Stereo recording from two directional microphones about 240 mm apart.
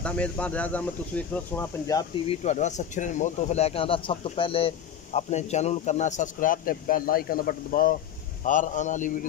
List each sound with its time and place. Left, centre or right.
0.0 s speech: centre
2.4 s a man's voice: left